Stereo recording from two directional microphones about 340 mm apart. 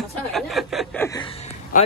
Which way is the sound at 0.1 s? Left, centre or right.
Centre.